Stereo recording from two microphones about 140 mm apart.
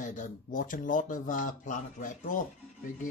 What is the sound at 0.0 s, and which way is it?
Speech, 65° left (ahead or behind).